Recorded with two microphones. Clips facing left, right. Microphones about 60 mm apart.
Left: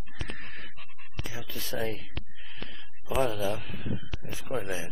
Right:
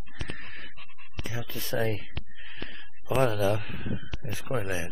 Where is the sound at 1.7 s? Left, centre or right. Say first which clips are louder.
Right 4 dB; right.